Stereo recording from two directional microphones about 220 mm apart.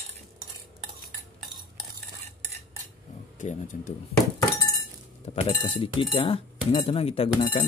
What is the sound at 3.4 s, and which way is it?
Speech, 35° left (ahead or behind).